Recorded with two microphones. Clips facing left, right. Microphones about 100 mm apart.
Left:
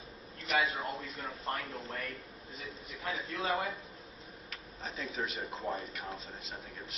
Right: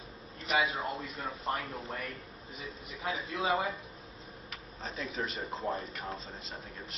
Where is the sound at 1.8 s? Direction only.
15° right (ahead or behind).